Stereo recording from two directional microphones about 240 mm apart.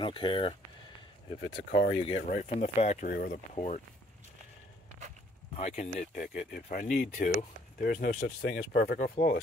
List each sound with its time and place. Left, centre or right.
0.0 s speech: left
1.4 s speech: left
5.6 s speech: left